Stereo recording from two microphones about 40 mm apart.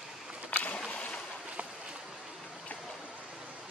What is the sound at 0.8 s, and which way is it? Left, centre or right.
Boat, left.